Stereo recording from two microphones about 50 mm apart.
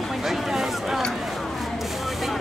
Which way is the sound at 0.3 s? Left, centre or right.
Centre.